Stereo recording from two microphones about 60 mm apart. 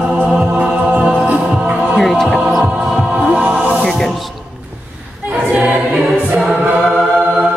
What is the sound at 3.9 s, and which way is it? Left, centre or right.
Music, centre.